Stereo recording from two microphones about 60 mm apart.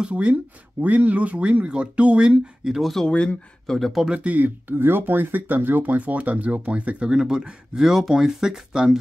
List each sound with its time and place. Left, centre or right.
0.0 s speech: centre
2.8 s speech: centre
3.1 s speech: centre
3.6 s speech: centre
4.1 s speech: right